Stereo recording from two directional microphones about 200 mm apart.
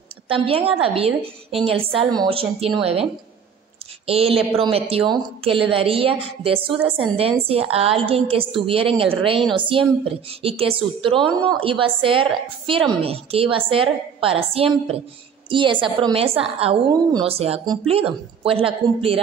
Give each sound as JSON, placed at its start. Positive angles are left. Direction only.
{"t": 0.3, "sound": "a woman's voice", "side_deg": -30}
{"t": 9.4, "sound": "a woman's voice", "side_deg": 0}
{"t": 9.7, "sound": "a woman's voice", "side_deg": -25}